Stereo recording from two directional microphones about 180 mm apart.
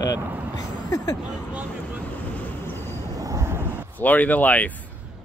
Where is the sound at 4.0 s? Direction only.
10° left (ahead or behind).